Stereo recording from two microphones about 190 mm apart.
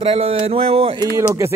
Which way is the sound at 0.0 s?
30° right (ahead or behind).